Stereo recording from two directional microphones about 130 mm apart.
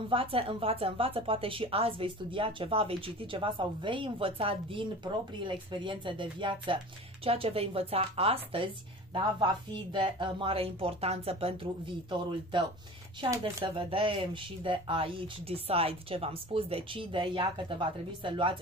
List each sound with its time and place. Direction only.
0.1 s a woman's voice: 45° right (ahead or behind)
12.1 s speech: 35° right (ahead or behind)